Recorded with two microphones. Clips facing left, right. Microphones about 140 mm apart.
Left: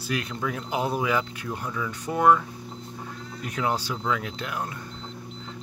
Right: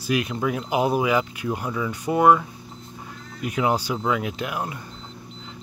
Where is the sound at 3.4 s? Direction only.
10° right (ahead or behind).